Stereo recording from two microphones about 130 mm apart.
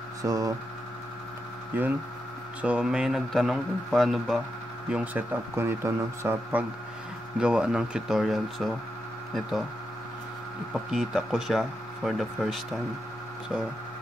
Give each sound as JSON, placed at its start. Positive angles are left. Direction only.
{"t": 0.2, "sound": "speech", "side_deg": -25}
{"t": 1.7, "sound": "speech", "side_deg": -15}
{"t": 4.8, "sound": "speech", "side_deg": -10}
{"t": 7.3, "sound": "speech", "side_deg": -5}
{"t": 10.7, "sound": "speech", "side_deg": -5}